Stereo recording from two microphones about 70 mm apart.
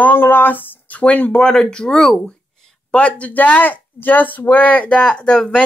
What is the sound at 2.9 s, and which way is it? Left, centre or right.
Speech, centre.